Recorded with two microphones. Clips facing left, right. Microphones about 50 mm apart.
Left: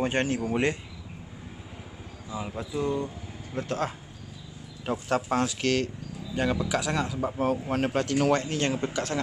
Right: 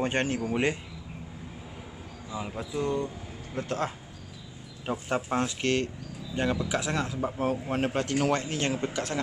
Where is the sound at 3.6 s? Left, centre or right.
Right.